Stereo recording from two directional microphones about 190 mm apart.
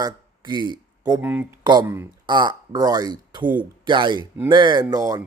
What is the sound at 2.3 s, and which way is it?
Speech, 20° right (ahead or behind).